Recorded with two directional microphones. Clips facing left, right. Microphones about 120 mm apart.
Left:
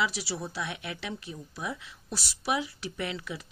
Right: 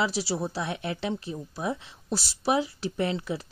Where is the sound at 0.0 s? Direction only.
30° right (ahead or behind).